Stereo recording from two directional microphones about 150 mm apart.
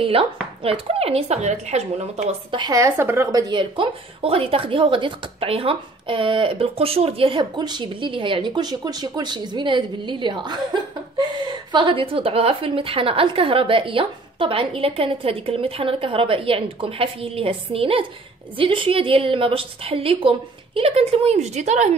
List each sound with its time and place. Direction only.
0.0 s a woman's voice: 40° right (ahead or behind)
2.5 s a woman's voice: 25° right (ahead or behind); by 21.9 s 50° right (ahead or behind)